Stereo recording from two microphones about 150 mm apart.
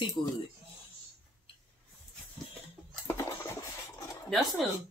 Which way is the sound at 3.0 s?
15° left (ahead or behind).